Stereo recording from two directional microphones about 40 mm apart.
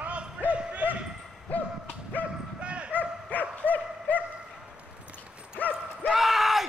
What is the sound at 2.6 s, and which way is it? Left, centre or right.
Bow-wow, right.